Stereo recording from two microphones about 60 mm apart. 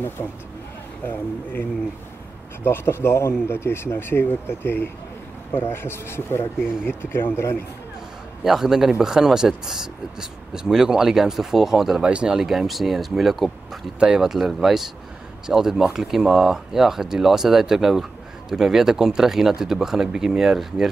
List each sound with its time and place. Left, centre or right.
1.0 s speech: left
8.5 s speech: centre
12.0 s speech: centre
12.4 s speech: centre
13.9 s speech: centre